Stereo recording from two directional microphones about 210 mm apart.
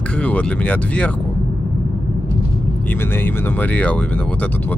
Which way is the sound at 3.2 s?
10° left (ahead or behind).